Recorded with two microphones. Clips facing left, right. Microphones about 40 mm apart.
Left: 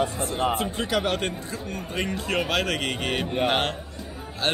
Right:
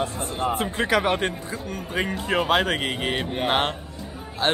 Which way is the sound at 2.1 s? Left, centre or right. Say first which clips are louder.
Right 4 dB; centre.